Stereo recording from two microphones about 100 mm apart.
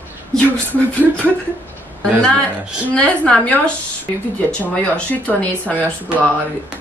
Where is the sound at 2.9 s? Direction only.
10° left (ahead or behind).